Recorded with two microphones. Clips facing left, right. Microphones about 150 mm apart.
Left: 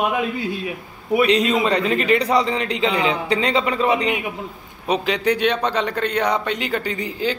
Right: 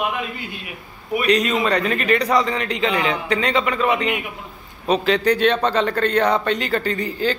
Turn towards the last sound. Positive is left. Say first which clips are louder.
# right 2 dB
turn(degrees=15)  # may be behind; listen again after turning